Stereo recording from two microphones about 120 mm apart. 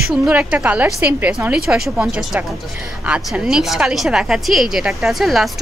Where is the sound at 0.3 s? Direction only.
10° right (ahead or behind).